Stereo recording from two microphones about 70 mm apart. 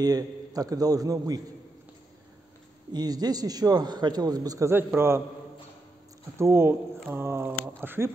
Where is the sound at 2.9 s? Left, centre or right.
Right.